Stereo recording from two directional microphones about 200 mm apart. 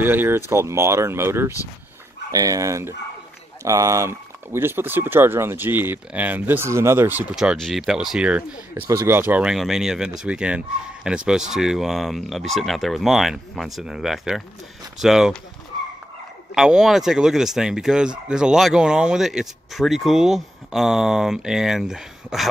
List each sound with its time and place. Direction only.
0.0 s speech: 10° right (ahead or behind)
16.5 s speech: 5° right (ahead or behind)